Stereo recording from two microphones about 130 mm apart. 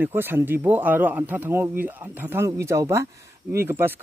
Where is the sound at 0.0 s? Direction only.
15° right (ahead or behind).